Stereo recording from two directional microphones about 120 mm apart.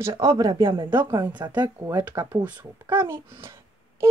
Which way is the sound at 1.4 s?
30° right (ahead or behind).